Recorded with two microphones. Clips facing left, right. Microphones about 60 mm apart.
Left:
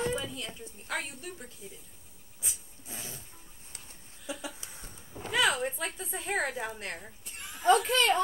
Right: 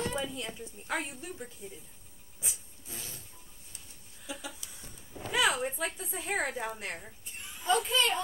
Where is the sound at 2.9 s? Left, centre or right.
Left.